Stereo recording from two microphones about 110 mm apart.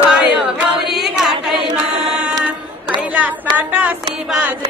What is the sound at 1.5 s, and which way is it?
Choir, 45° right (ahead or behind).